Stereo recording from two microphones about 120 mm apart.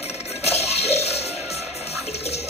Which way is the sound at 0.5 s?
60° left (ahead or behind).